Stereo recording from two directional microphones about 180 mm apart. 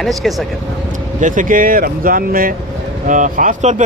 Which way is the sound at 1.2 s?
45° right (ahead or behind).